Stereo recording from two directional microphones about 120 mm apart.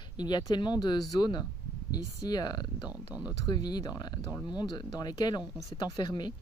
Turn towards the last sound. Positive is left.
turn(degrees=35)  # may be behind; listen again after turning